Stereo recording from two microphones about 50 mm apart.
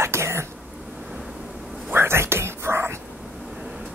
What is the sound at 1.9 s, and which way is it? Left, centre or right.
Whispering, right.